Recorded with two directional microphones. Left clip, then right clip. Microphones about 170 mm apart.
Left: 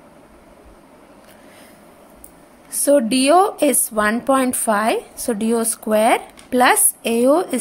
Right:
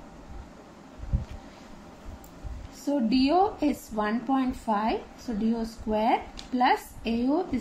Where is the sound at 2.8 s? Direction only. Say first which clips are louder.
Left 11 dB; 55° left (ahead or behind).